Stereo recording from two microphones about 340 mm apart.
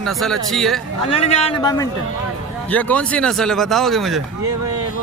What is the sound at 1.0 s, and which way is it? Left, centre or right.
A man's voice, centre.